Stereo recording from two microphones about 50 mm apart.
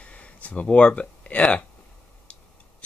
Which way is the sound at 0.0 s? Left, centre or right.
Left.